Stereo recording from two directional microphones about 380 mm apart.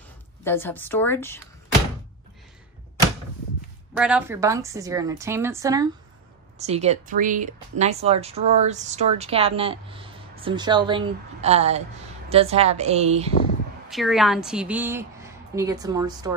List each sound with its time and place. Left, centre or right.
0.4 s a woman's voice: centre
3.9 s a woman's voice: centre
13.8 s a woman's voice: centre